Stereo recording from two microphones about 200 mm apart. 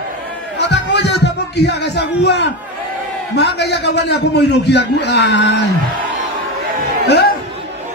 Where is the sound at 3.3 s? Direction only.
55° left (ahead or behind).